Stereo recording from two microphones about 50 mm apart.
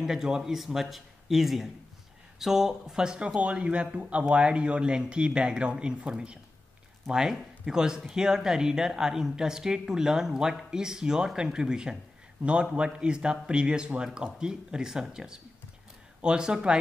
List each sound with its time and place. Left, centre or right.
0.0 s speech: centre
3.3 s speech: right